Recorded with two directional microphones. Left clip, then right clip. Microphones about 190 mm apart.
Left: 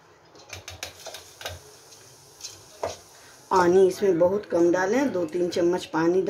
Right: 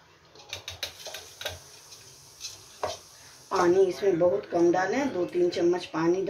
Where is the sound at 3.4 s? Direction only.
55° left (ahead or behind).